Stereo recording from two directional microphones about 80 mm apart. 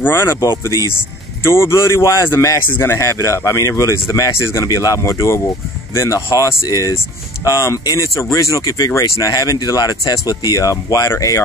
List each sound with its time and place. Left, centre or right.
0.0 s speech: left
0.4 s speech: left
1.4 s speech: left
4.6 s speech: left